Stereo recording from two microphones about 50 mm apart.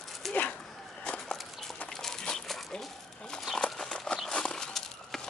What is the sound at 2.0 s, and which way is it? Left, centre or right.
Crumpling, centre.